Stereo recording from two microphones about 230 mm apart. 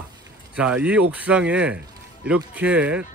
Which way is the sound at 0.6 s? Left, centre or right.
Centre.